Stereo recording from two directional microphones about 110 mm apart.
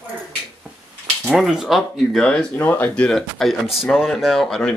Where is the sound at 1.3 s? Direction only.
5° right (ahead or behind).